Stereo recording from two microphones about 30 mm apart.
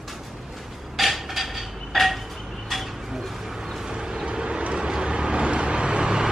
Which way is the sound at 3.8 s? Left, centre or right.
Right.